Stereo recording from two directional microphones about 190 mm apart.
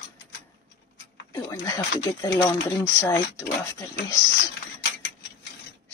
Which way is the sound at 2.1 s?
15° left (ahead or behind).